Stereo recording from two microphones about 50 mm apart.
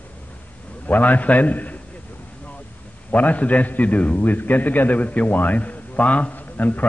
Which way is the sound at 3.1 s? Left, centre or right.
Left.